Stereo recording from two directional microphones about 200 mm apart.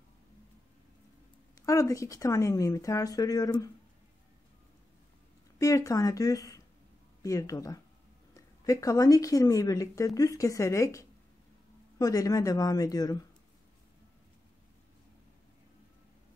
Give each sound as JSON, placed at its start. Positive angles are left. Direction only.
{"t": 1.7, "sound": "speech", "side_deg": 15}
{"t": 5.6, "sound": "speech", "side_deg": 15}